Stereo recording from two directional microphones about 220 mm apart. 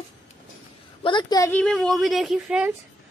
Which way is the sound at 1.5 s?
5° left (ahead or behind).